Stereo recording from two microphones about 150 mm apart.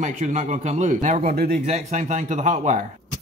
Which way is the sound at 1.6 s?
50° right (ahead or behind).